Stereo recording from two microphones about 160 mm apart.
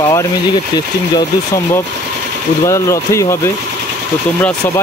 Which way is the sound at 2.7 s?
20° left (ahead or behind).